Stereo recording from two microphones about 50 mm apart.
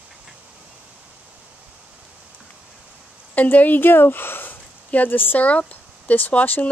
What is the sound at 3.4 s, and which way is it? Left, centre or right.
Speech, left.